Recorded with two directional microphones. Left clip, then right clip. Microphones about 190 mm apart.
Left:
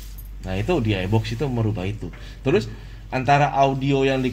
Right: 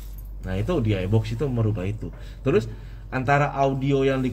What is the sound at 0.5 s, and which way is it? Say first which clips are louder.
A man's voice: left 3 dB; 5° right (ahead or behind).